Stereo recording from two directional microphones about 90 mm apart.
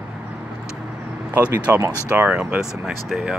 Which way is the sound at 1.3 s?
20° right (ahead or behind).